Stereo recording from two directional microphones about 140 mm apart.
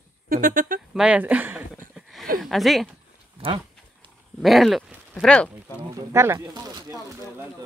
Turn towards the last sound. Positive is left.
turn(degrees=-25)  # may be behind; listen again after turning